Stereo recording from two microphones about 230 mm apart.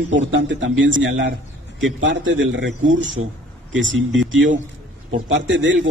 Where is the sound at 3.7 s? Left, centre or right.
Right.